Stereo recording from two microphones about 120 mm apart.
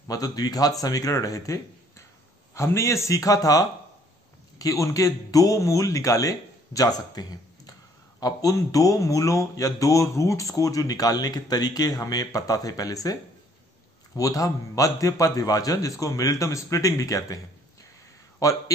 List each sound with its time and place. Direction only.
0.1 s a man's voice: 30° left (ahead or behind)
18.4 s a man's voice: 30° left (ahead or behind)